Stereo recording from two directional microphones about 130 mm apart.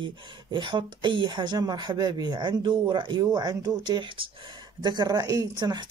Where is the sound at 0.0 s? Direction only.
40° right (ahead or behind).